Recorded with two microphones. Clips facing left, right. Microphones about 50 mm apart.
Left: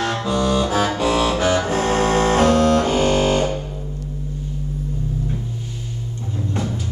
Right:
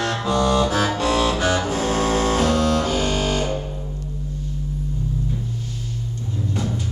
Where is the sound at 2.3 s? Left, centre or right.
Left.